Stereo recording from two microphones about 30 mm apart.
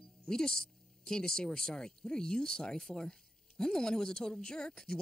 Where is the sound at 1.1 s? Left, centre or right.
Left.